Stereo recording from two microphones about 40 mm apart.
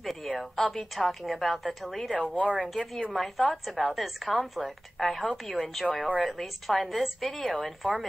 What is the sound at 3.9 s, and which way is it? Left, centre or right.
A woman's voice, centre.